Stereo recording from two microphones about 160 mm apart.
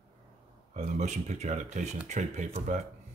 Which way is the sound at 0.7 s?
45° right (ahead or behind).